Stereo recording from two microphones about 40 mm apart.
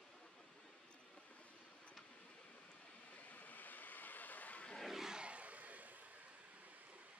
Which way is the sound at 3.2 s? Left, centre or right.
Left.